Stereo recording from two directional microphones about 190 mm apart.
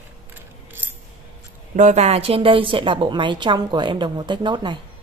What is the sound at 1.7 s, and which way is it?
A woman's voice, 40° right (ahead or behind).